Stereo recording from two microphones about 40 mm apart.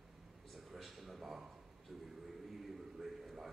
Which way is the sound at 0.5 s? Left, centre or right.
Centre.